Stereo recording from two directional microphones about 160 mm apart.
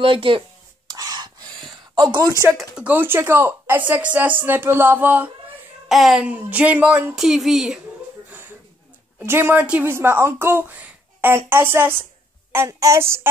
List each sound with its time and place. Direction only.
0.0 s speech: 35° right (ahead or behind)
0.8 s a sound: 25° right (ahead or behind)
2.0 s speech: 25° right (ahead or behind)
2.4 s speech: 5° right (ahead or behind)
8.3 s a sound: 10° right (ahead or behind)
9.2 s speech: 15° right (ahead or behind)